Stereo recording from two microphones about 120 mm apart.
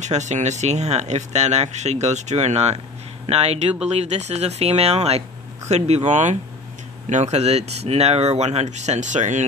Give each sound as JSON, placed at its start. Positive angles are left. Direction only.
{"t": 0.0, "sound": "speech", "side_deg": -75}